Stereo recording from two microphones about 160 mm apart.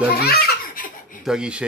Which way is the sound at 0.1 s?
80° left.